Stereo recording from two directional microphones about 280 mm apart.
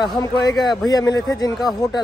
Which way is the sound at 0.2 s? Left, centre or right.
Centre.